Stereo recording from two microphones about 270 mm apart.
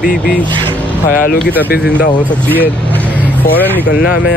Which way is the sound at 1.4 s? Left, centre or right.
Centre.